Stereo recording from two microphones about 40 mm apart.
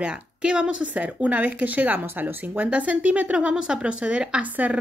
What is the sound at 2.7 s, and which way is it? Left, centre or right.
Speech, right.